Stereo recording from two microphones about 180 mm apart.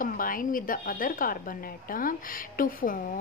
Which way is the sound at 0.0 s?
50° left (ahead or behind).